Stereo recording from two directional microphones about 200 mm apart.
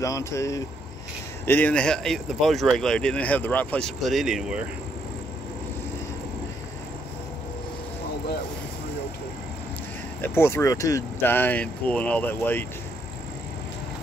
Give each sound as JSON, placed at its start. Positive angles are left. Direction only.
{"t": 0.0, "sound": "speech", "side_deg": 15}
{"t": 10.2, "sound": "speech", "side_deg": 10}